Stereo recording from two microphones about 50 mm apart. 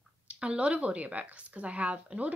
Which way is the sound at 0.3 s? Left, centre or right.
Right.